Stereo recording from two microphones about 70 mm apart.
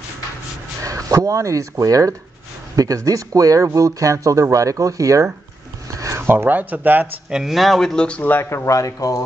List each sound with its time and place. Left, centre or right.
0.8 s speech: right
5.9 s a sound: right
6.2 s speech: right
7.2 s speech: centre
8.0 s speech: centre
8.3 s speech: left